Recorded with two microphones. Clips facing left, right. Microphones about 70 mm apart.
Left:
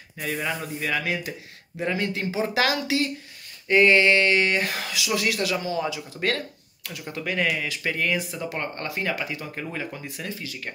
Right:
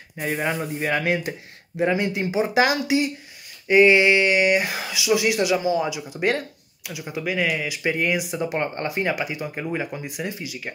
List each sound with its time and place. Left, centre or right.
0.2 s speech: right
1.8 s speech: centre